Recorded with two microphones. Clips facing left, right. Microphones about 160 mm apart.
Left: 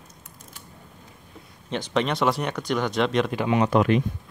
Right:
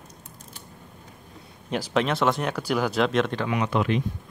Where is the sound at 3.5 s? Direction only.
35° left (ahead or behind).